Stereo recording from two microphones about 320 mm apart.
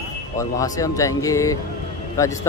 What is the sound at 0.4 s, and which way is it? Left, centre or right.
Speech, centre.